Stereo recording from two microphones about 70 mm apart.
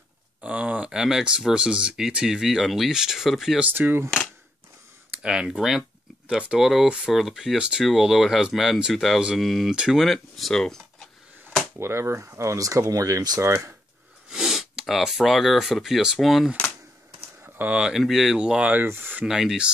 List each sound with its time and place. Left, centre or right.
0.4 s speech: centre
3.7 s speech: right
5.2 s speech: centre
10.0 s speech: centre
11.8 s speech: right
13.4 s speech: right
14.3 s speech: centre
17.4 s typing: right
17.7 s speech: centre
18.4 s speech: centre
18.7 s speech: right
19.2 s speech: centre